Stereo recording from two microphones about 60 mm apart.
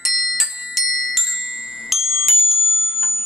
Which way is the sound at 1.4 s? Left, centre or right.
Centre.